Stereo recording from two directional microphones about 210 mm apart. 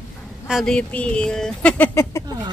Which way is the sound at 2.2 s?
20° right (ahead or behind).